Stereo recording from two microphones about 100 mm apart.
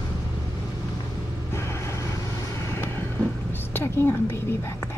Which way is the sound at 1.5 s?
25° left (ahead or behind).